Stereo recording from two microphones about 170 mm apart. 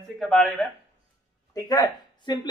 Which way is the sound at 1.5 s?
20° left (ahead or behind).